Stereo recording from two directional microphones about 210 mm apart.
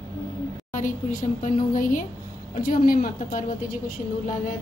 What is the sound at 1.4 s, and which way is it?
A woman's voice, 40° left (ahead or behind).